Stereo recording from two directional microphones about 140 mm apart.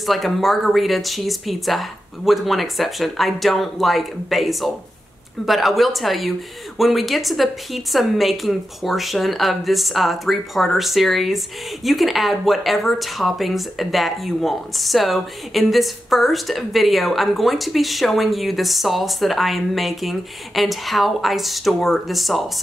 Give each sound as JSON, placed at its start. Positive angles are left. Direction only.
{"t": 0.0, "sound": "speech", "side_deg": 0}